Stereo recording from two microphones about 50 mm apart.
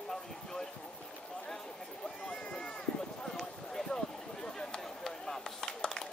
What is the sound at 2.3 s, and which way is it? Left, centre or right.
Speech, left.